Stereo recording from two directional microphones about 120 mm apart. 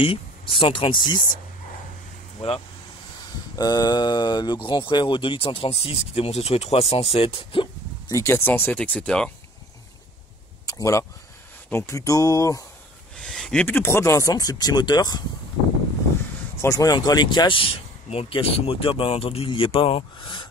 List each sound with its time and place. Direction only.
0.0 s speech: 50° left (ahead or behind)
3.5 s speech: 35° left (ahead or behind); by 7.6 s 50° left (ahead or behind)
8.1 s speech: 25° left (ahead or behind); by 9.3 s 5° left (ahead or behind)
10.7 s speech: 25° left (ahead or behind)
13.1 s a sound: 5° left (ahead or behind)
13.7 s speech: 20° left (ahead or behind); by 15.2 s 35° left (ahead or behind)
16.6 s speech: 30° left (ahead or behind); by 20.4 s 45° left (ahead or behind)